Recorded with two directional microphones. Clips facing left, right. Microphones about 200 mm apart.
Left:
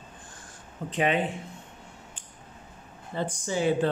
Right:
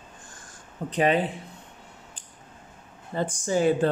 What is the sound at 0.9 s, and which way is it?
Speech, 40° right (ahead or behind).